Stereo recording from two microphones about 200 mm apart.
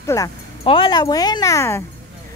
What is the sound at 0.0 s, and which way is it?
Speech, 15° left (ahead or behind).